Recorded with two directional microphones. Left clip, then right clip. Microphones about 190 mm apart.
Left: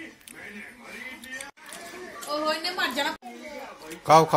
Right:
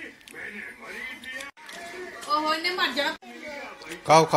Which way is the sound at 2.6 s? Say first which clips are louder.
Right 2 dB; 55° left (ahead or behind).